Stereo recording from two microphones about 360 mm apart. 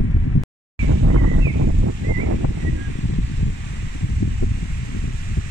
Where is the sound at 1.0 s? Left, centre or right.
Right.